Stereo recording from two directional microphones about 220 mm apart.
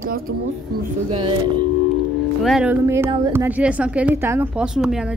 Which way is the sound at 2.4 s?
5° right (ahead or behind).